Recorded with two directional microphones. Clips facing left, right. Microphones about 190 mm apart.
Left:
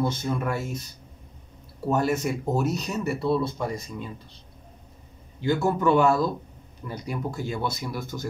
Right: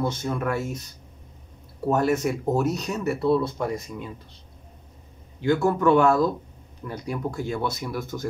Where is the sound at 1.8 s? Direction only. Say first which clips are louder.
Right 2 dB; centre (ahead or behind).